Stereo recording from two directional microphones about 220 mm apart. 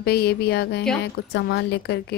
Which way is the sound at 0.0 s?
45° left (ahead or behind).